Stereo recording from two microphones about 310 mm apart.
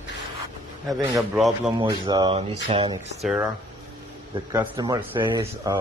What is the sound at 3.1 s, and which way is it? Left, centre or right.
Speech, centre.